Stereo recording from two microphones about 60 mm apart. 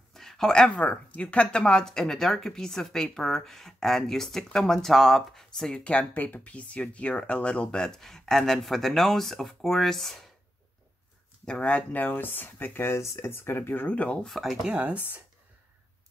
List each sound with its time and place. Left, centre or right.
0.1 s speech: centre
5.9 s speech: left; by 10.3 s centre
11.4 s speech: centre
14.2 s speech: centre
14.7 s speech: right